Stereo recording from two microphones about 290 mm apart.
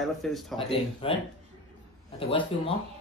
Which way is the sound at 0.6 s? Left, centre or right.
Centre.